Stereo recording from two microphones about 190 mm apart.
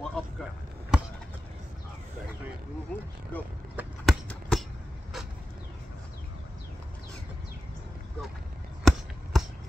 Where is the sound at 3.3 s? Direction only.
10° left (ahead or behind).